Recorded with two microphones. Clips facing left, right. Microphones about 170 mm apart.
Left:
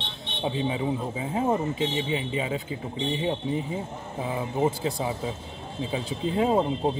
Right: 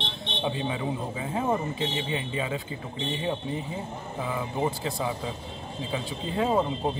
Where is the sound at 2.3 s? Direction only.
20° left (ahead or behind).